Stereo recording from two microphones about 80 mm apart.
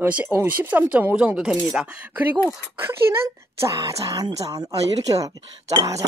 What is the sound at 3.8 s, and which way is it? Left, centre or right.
Speech, right.